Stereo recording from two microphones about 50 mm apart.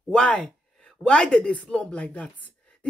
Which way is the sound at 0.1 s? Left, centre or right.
Left.